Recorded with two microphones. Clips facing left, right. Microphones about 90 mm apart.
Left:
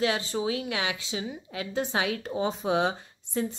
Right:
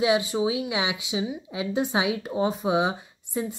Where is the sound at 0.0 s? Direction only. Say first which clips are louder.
Right 5 dB; 15° right (ahead or behind).